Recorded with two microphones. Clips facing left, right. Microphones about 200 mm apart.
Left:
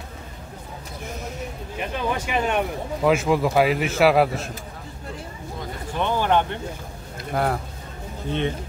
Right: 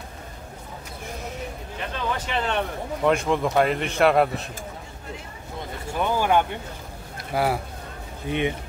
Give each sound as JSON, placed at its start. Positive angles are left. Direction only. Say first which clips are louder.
{"t": 1.8, "sound": "a man's voice", "louder": "left 3 dB", "side_deg": 15}
{"t": 5.9, "sound": "speech", "louder": "even", "side_deg": -10}